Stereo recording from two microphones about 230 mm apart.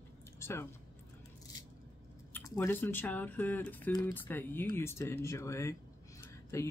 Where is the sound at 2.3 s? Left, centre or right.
Centre.